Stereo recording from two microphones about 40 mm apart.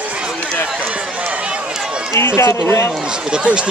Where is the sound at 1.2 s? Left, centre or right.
Right.